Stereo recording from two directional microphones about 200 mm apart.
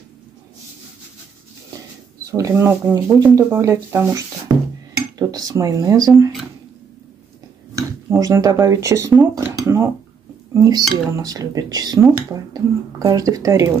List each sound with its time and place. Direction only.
2.3 s speech: 15° right (ahead or behind)
4.5 s dishes: 20° right (ahead or behind)
5.3 s speech: 20° right (ahead or behind)
7.7 s speech: 15° right (ahead or behind)